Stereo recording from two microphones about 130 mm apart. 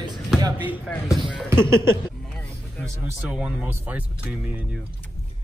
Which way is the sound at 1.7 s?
20° right (ahead or behind).